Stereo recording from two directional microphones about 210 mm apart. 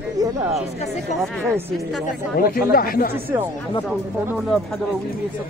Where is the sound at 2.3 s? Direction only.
45° left (ahead or behind).